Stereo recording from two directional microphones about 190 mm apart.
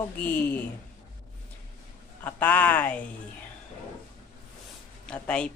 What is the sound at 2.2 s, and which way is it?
Speech, 10° left (ahead or behind).